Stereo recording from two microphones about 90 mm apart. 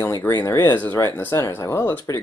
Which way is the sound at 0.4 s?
25° left (ahead or behind).